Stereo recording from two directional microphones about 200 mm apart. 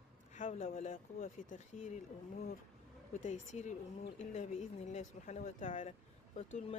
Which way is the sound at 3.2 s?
40° left (ahead or behind).